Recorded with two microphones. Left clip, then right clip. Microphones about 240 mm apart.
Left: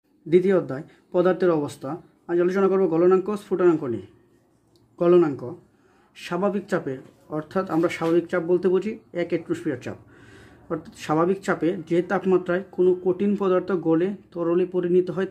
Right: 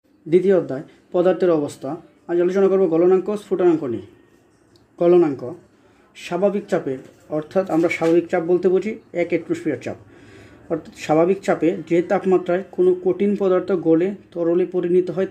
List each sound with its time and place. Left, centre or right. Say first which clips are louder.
0.3 s speech: right 3 dB; centre